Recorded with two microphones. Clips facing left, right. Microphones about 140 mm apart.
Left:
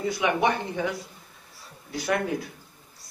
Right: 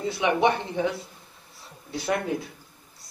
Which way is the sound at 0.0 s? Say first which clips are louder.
Right 1 dB; 25° right (ahead or behind).